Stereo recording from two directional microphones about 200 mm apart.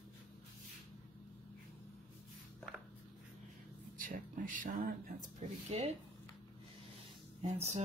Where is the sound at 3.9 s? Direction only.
45° right (ahead or behind).